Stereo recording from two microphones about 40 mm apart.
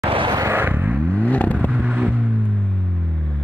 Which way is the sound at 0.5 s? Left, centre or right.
Right.